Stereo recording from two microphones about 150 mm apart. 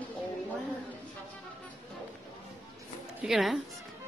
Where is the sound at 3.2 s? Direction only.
Centre (ahead or behind).